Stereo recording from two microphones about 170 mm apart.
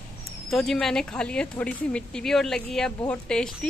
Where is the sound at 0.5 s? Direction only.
Centre (ahead or behind).